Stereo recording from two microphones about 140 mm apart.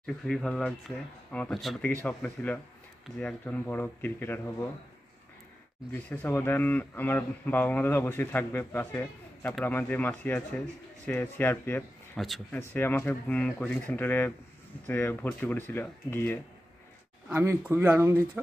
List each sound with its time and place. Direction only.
0.0 s speech: 5° left (ahead or behind)
2.0 s speech: 15° left (ahead or behind)
5.9 s speech: 10° left (ahead or behind)
17.3 s speech: 15° right (ahead or behind)